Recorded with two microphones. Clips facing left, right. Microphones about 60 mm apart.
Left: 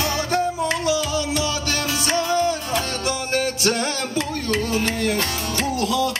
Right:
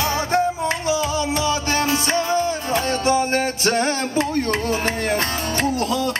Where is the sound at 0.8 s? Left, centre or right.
Right.